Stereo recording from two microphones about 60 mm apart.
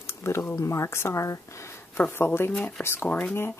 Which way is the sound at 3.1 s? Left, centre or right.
Left.